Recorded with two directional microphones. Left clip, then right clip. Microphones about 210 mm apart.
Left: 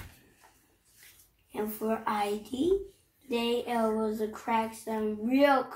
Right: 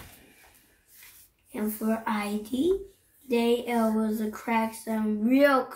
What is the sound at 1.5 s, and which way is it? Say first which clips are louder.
Speech: right 1 dB; 50° right (ahead or behind).